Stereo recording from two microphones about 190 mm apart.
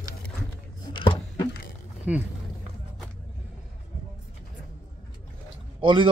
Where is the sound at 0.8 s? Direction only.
25° left (ahead or behind).